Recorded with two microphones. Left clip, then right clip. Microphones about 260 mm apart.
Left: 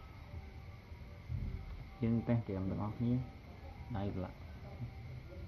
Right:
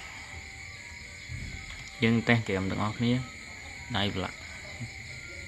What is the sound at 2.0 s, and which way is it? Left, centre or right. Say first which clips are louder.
Speech: right 12 dB; right.